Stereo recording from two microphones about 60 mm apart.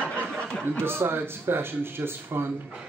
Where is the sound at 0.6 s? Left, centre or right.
Right.